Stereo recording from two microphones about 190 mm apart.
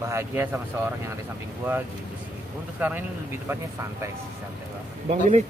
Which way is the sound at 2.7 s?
10° right (ahead or behind).